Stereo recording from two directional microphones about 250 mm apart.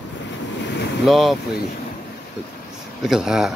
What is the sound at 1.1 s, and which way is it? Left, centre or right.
Speech, centre.